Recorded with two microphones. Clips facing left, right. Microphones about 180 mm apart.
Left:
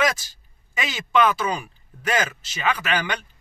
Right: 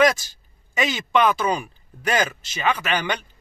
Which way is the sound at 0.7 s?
5° left (ahead or behind).